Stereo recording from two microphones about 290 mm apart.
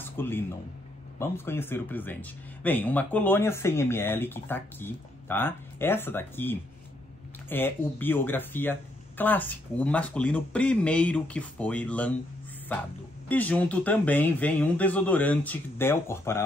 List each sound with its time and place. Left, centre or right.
0.0 s a sound: centre
1.2 s speech: centre
13.3 s speech: centre